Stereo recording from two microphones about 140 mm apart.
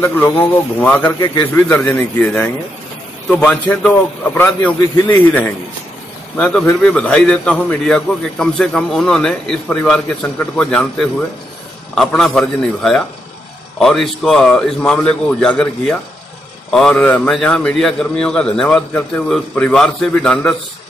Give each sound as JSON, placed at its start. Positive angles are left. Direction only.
{"t": 0.0, "sound": "a man's voice", "side_deg": 15}